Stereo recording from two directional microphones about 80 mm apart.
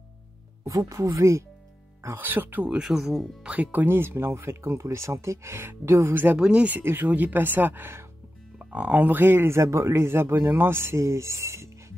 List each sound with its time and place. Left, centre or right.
0.7 s speech: right
2.0 s speech: right
2.8 s speech: centre
3.5 s speech: right
6.3 s speech: centre
6.8 s speech: right